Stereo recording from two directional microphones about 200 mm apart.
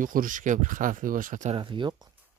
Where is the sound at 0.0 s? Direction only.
45° right (ahead or behind).